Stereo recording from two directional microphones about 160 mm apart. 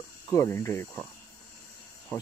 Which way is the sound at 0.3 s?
15° left (ahead or behind).